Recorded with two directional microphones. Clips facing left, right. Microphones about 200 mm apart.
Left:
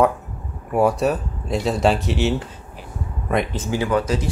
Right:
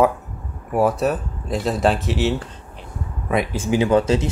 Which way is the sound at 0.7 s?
Centre (ahead or behind).